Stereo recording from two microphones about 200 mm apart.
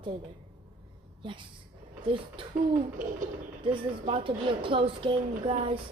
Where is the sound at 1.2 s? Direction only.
25° right (ahead or behind).